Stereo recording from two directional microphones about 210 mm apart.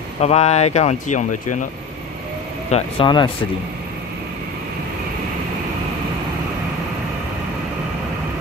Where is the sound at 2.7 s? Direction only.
30° left (ahead or behind).